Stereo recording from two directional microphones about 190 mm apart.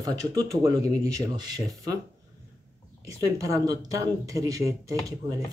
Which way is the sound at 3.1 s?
15° right (ahead or behind).